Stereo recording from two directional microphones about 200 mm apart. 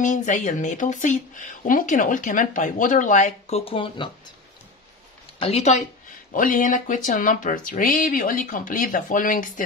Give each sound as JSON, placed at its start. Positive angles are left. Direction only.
{"t": 0.0, "sound": "speech", "side_deg": 40}
{"t": 5.4, "sound": "speech", "side_deg": 30}